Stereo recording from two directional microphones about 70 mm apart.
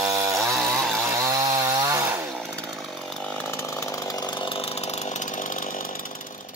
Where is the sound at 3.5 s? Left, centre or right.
Left.